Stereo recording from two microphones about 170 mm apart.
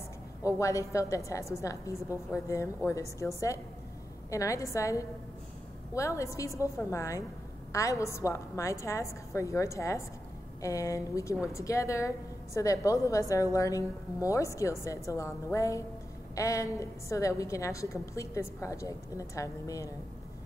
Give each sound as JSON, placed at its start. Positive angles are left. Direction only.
{"t": 0.4, "sound": "a woman's voice", "side_deg": 20}